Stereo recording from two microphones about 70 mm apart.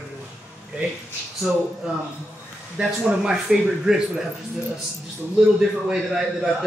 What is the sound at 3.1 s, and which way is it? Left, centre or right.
A man's voice, centre.